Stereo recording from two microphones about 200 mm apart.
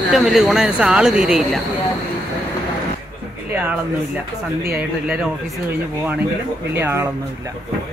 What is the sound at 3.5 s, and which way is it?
Speech, 10° right (ahead or behind).